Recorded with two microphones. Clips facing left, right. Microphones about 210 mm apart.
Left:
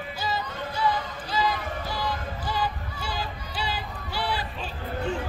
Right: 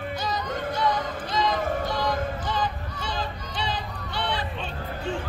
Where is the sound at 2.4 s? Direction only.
5° left (ahead or behind).